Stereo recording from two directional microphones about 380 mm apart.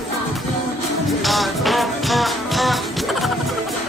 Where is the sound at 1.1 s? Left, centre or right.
Centre.